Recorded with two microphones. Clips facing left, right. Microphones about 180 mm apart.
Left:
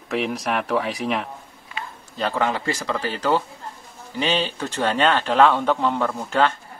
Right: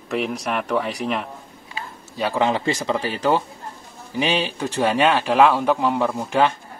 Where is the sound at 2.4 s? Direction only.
20° right (ahead or behind).